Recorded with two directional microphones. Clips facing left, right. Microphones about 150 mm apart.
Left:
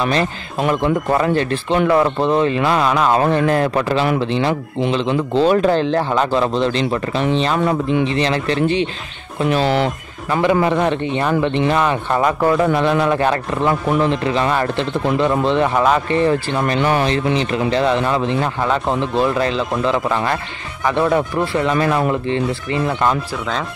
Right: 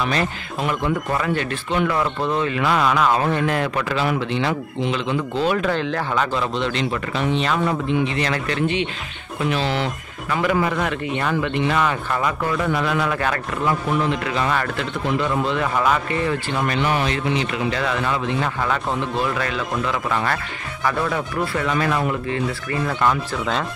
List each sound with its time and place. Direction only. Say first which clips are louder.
0.1 s speech: left 4 dB; 35° left (ahead or behind)
9.5 s speech: left 6 dB; 50° left (ahead or behind)
10.4 s speech: left 6 dB; 25° left (ahead or behind)